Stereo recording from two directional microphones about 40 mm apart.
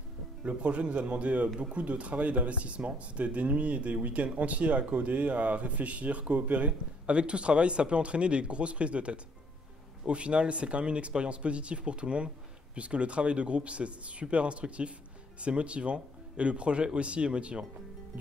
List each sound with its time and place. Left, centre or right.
0.4 s speech: right